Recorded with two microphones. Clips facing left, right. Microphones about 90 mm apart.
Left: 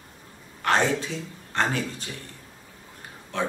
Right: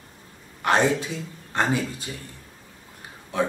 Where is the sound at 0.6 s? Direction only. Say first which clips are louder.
Right 2 dB; 15° right (ahead or behind).